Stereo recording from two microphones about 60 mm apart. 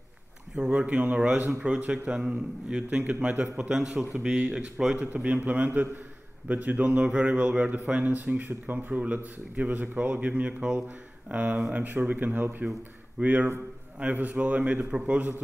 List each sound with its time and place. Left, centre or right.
0.6 s speech: right
4.9 s a man's voice: right
5.2 s speech: right